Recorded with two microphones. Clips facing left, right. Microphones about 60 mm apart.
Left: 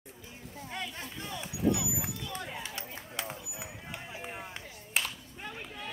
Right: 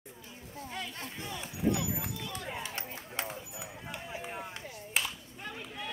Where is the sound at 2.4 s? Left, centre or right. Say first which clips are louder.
Right 1 dB; right.